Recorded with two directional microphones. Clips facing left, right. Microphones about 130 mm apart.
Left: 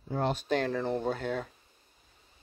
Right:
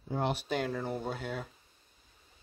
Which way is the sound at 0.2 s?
10° right (ahead or behind).